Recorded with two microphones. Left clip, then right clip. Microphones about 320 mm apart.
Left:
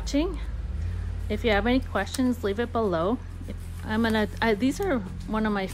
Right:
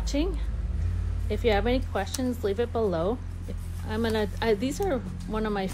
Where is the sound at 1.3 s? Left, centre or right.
Left.